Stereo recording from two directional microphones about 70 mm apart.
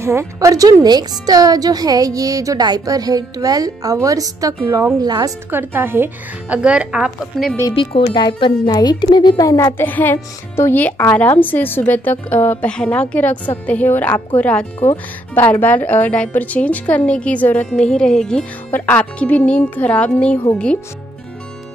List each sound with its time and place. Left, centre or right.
0.0 s speech: right
5.0 s a woman's voice: right
5.5 s a woman's voice: right
6.5 s speech: centre
7.3 s speech: centre
8.2 s speech: left
9.4 s a woman's voice: left
9.8 s a woman's voice: left
12.6 s a woman's voice: centre
17.6 s speech: centre
18.7 s a woman's voice: left